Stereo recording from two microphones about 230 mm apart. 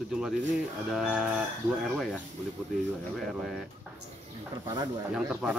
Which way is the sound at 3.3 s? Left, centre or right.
Centre.